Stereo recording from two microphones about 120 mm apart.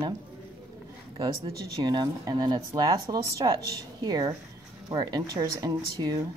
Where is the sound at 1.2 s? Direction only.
30° right (ahead or behind).